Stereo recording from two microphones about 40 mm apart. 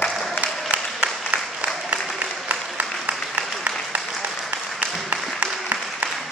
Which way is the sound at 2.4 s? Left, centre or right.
Right.